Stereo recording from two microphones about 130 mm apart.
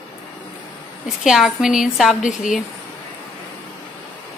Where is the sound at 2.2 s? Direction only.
75° left (ahead or behind).